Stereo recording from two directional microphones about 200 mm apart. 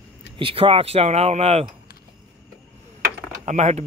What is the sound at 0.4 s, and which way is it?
Speech, 25° right (ahead or behind).